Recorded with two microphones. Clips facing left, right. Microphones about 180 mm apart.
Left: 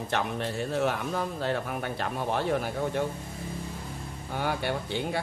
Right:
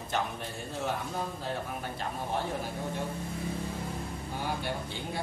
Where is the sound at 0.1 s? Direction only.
70° left (ahead or behind).